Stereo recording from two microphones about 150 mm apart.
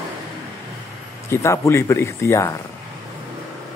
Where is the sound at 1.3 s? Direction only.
20° left (ahead or behind).